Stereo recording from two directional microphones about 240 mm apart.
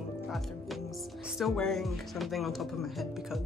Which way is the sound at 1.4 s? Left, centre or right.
Centre.